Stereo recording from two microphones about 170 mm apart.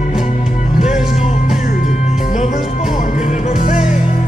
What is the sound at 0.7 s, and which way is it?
Music, 45° left (ahead or behind).